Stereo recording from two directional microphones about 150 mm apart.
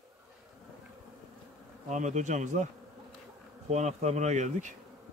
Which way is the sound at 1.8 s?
55° right (ahead or behind).